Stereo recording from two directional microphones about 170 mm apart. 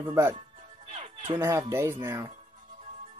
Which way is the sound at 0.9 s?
40° right (ahead or behind).